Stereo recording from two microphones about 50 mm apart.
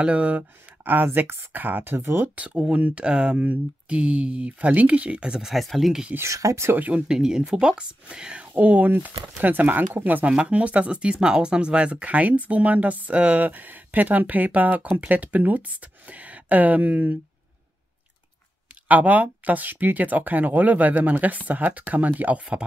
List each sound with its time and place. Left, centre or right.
0.0 s speech: right
0.4 s speech: right
2.2 s speech: right
5.4 s speech: centre
6.2 s speech: right
6.9 s speech: centre; by 9.8 s right
10.2 s speech: right
18.9 s speech: right